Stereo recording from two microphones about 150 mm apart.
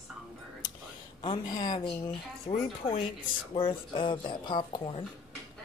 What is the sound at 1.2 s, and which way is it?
Speech, 30° left (ahead or behind).